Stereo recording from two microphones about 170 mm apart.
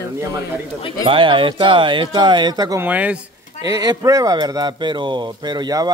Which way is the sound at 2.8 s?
10° right (ahead or behind).